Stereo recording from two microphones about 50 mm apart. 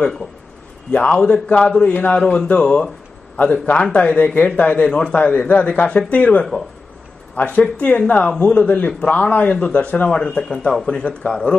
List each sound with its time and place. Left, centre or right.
0.9 s a man's voice: centre
9.5 s a man's voice: left
10.1 s a man's voice: centre